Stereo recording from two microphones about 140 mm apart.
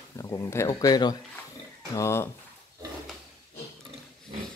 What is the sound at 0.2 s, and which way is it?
Speech, 25° left (ahead or behind).